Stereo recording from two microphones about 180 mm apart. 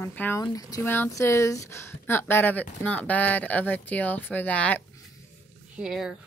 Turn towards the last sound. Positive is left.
turn(degrees=-5)  # may be behind; listen again after turning